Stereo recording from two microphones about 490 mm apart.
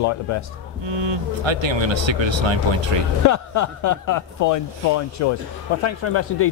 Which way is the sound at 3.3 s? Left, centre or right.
Left.